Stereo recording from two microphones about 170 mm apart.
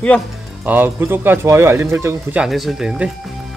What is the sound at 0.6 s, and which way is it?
Speech, 10° right (ahead or behind).